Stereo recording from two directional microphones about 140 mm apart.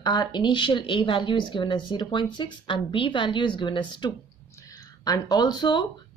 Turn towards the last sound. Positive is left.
turn(degrees=30)  # may be behind; listen again after turning